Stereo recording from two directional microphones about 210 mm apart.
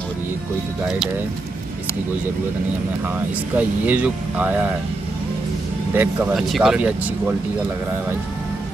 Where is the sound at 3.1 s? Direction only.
10° right (ahead or behind).